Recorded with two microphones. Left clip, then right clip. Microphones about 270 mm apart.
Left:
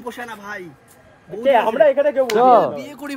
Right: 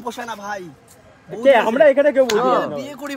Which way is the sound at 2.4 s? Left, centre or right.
Centre.